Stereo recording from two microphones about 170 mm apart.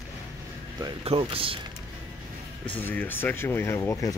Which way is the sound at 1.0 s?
35° right (ahead or behind).